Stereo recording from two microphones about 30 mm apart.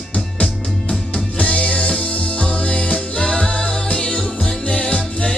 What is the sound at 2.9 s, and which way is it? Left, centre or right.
Music, left.